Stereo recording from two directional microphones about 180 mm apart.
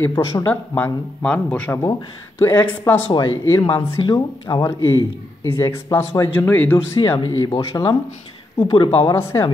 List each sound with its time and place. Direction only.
0.4 s speech: 10° left (ahead or behind)
3.1 s a man's voice: 25° left (ahead or behind)
7.0 s a man's voice: 25° left (ahead or behind)